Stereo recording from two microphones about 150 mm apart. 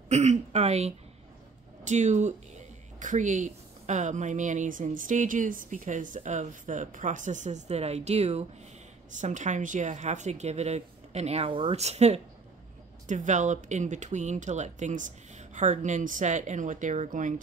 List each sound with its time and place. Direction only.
0.1 s speech: 50° right (ahead or behind)